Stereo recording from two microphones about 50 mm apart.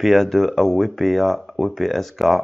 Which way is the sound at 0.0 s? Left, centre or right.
Centre.